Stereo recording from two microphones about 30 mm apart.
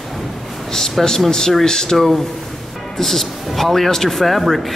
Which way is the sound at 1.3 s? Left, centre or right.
Centre.